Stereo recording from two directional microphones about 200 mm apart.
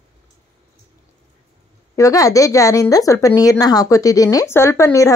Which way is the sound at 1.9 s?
15° left (ahead or behind).